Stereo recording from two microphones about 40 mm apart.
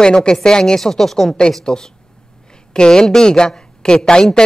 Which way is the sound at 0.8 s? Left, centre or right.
Centre.